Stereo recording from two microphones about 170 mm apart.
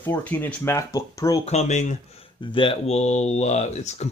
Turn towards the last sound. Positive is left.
turn(degrees=40)  # may be behind; listen again after turning